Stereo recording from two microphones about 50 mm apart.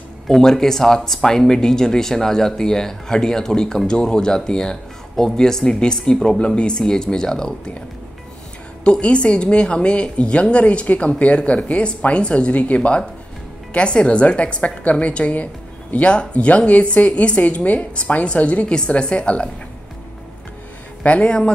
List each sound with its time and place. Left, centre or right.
0.3 s a woman's voice: centre
9.0 s a woman's voice: left
21.0 s speech: left